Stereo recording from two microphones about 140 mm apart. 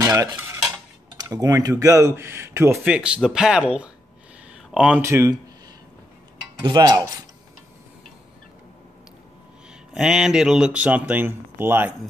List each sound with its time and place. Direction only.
0.0 s stir: 25° right (ahead or behind)
1.1 s speech: 25° right (ahead or behind)
2.8 s speech: 5° right (ahead or behind)
5.0 s speech: 20° right (ahead or behind)
6.6 s speech: 30° right (ahead or behind)
9.9 s speech: 5° right (ahead or behind)